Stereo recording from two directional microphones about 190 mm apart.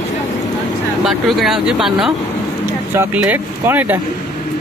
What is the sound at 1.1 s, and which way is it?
Speech, centre (ahead or behind).